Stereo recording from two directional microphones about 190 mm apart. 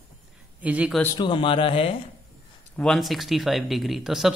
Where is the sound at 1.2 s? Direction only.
25° left (ahead or behind).